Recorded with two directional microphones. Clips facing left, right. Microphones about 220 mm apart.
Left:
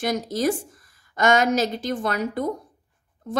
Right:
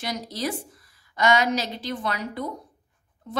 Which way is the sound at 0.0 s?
50° left (ahead or behind).